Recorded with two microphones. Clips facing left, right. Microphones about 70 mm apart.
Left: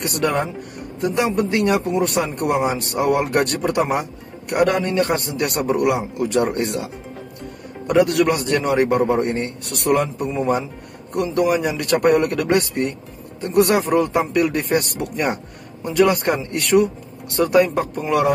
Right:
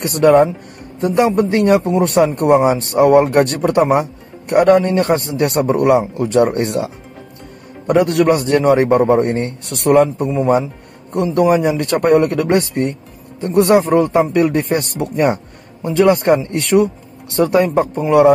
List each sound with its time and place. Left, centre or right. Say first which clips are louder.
0.0 s speech: right 10 dB; right
5.1 s speech: right 6 dB; right